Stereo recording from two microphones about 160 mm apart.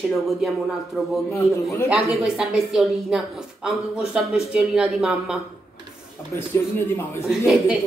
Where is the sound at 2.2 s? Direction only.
5° right (ahead or behind).